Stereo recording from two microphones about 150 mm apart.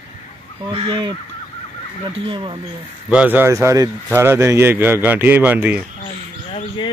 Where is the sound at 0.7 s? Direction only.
30° right (ahead or behind).